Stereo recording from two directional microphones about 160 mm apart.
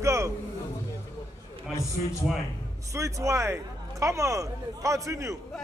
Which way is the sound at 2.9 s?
20° right (ahead or behind).